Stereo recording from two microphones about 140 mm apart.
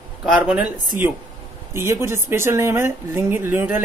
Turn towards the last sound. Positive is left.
turn(degrees=-15)  # may be behind; listen again after turning